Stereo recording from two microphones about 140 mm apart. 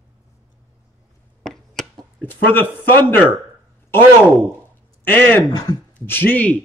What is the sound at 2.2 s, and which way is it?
Speech, 15° left (ahead or behind).